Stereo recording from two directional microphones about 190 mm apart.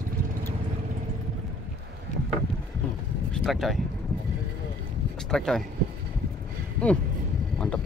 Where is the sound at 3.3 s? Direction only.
Centre (ahead or behind).